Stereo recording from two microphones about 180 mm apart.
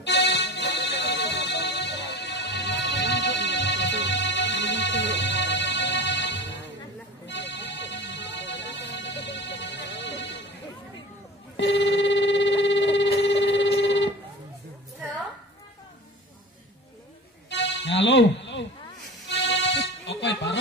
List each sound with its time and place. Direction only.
0.0 s music: 75° left (ahead or behind)
11.5 s telephone: 80° left
17.5 s music: 80° left